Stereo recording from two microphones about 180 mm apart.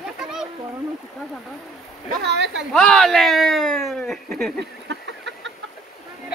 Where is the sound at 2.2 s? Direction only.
75° right (ahead or behind).